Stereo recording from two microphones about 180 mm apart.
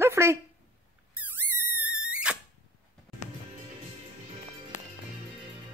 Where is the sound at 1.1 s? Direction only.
10° right (ahead or behind).